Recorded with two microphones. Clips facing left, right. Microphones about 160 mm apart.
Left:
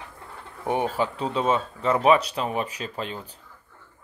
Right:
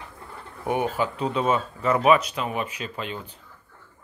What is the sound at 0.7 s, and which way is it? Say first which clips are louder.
Speech: even; 30° left (ahead or behind).